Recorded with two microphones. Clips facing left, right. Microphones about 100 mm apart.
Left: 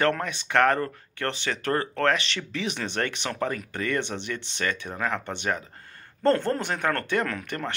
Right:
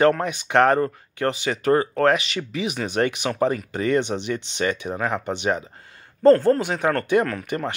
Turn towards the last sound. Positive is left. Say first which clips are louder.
# right 5 dB
turn(degrees=-10)  # may be behind; listen again after turning